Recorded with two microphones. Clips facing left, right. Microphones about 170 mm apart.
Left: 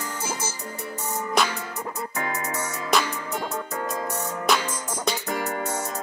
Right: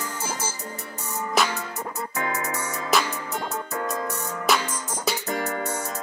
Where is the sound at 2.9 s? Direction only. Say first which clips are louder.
Even; 5° right (ahead or behind).